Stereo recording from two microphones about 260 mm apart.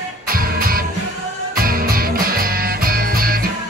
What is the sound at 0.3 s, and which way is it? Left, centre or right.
Music, right.